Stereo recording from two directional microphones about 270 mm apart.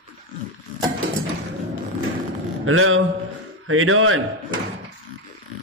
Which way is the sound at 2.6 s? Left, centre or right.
Right.